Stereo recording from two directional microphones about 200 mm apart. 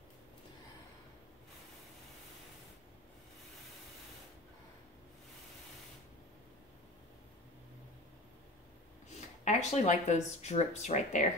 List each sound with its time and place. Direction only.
9.4 s speech: 35° left (ahead or behind)